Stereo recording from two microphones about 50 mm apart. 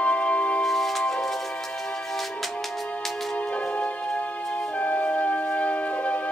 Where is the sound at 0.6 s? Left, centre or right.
Centre.